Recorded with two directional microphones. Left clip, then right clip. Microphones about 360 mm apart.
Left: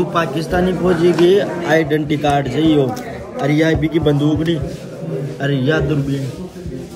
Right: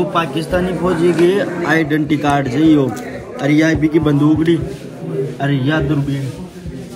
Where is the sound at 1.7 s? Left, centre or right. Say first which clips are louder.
Even; centre.